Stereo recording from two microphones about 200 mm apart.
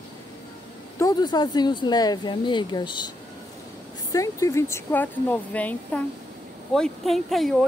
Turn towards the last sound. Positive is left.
turn(degrees=0)  # may be behind; listen again after turning